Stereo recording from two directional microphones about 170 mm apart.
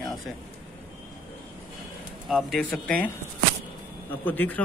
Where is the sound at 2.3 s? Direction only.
Centre (ahead or behind).